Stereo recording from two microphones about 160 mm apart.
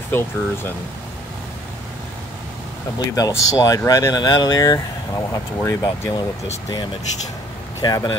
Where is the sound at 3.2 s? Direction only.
20° left (ahead or behind).